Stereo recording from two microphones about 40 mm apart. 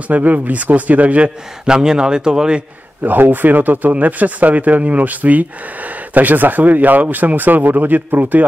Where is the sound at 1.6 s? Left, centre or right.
Centre.